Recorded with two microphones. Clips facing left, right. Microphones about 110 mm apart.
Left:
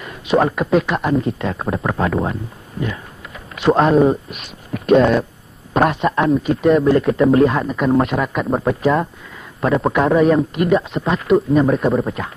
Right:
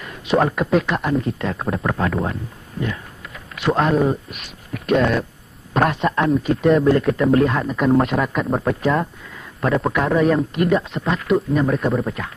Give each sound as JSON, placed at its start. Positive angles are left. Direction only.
{"t": 0.0, "sound": "speech", "side_deg": 10}
{"t": 3.5, "sound": "speech", "side_deg": 25}
{"t": 9.8, "sound": "a man's voice", "side_deg": 25}